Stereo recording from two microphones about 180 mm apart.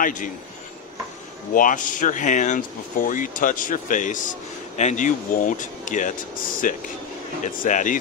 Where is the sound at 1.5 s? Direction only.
45° left (ahead or behind).